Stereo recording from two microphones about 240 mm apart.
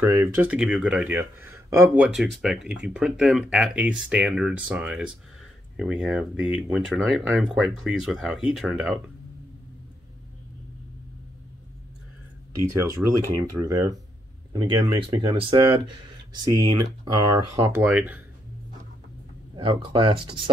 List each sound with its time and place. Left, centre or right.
0.0 s speech: centre
13.6 s speech: centre
19.5 s speech: centre